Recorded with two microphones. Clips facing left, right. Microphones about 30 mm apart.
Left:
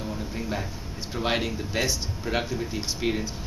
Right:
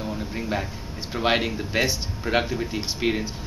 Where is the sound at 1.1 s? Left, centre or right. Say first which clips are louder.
Right 4 dB; centre.